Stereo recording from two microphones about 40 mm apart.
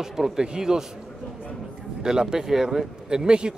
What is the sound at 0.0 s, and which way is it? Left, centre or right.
Speech, centre.